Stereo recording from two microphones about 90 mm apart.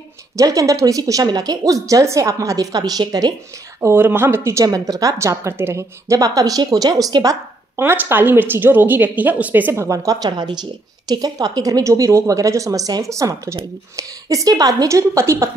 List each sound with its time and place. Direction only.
0.4 s speech: 40° right (ahead or behind)
3.8 s speech: 25° right (ahead or behind); by 7.3 s 45° right (ahead or behind)
7.7 s a woman's voice: 25° right (ahead or behind)
9.8 s speech: 40° right (ahead or behind)
10.2 s speech: 50° right (ahead or behind); by 15.5 s 30° right (ahead or behind)